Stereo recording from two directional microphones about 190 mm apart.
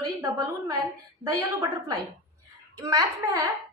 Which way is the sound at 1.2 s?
20° right (ahead or behind).